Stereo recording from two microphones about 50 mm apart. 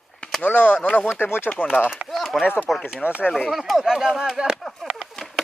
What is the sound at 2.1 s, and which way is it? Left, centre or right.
Chop, centre.